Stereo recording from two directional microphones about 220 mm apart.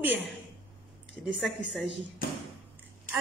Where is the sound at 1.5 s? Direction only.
55° left (ahead or behind).